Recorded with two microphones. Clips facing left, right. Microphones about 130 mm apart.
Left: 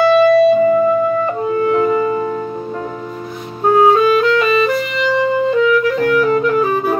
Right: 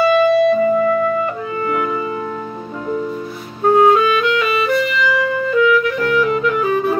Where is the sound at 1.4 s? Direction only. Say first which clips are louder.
Left 6 dB; 35° left (ahead or behind).